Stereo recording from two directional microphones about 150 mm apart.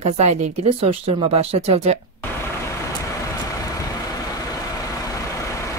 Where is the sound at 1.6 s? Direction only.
45° right (ahead or behind).